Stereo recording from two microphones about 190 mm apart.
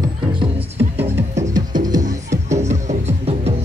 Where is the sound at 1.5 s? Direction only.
20° right (ahead or behind).